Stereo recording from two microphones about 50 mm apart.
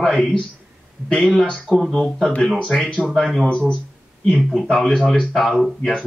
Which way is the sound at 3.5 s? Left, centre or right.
Centre.